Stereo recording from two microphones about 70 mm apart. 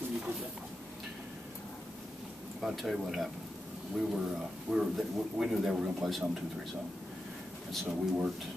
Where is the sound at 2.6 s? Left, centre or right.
Centre.